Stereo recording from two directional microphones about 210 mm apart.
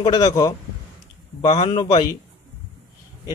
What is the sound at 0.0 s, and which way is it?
A man's voice, 20° left (ahead or behind).